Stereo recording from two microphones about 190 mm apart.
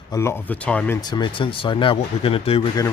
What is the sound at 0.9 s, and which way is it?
Speech, 20° left (ahead or behind).